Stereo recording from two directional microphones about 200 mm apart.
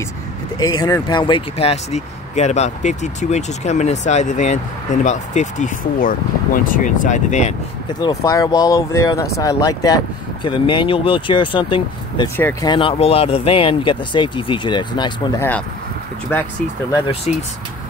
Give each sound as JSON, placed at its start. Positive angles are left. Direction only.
{"t": 0.6, "sound": "speech", "side_deg": 20}
{"t": 8.0, "sound": "speech", "side_deg": 15}
{"t": 16.3, "sound": "speech", "side_deg": 10}
{"t": 17.3, "sound": "speech", "side_deg": 35}